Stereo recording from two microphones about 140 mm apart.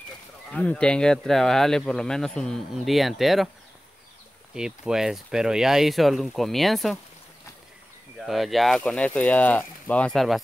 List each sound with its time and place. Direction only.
0.5 s speech: 10° left (ahead or behind)
4.6 s speech: 5° right (ahead or behind)
8.2 s speech: centre (ahead or behind)